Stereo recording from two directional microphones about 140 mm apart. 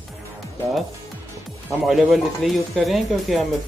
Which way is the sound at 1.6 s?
Centre (ahead or behind).